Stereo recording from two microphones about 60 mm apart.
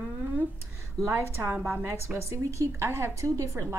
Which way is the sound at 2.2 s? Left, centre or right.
Right.